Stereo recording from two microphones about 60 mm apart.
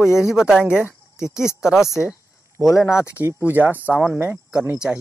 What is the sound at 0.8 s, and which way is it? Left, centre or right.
Cricket, left.